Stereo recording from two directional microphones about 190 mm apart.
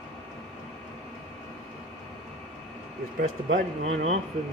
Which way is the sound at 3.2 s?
45° right (ahead or behind).